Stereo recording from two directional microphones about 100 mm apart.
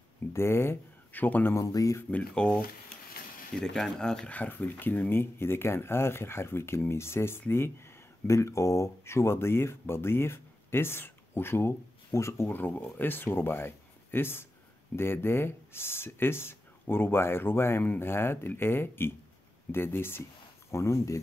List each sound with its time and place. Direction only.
0.3 s speech: 25° left (ahead or behind)
1.6 s speech: 35° left (ahead or behind)
2.0 s speech: 10° left (ahead or behind); by 21.2 s 30° left (ahead or behind)